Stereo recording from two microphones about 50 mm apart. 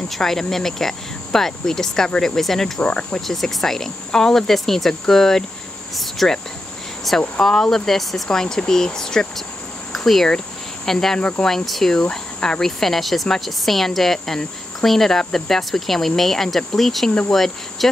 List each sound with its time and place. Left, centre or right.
0.1 s cricket: centre
2.8 s speech: left
3.2 s cricket: centre
7.1 s speech: centre
7.4 s cricket: centre
9.9 s speech: centre
10.9 s cricket: centre
11.1 s speech: left
11.4 s cricket: centre
11.9 s speech: centre